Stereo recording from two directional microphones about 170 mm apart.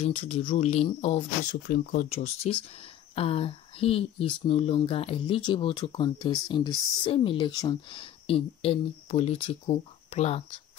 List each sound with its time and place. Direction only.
0.0 s speech: 30° left (ahead or behind)
1.5 s speech: 60° left (ahead or behind)
2.0 s speech: 40° left (ahead or behind)